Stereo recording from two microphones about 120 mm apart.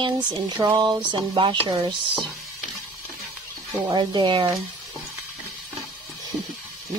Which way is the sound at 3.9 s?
40° right (ahead or behind).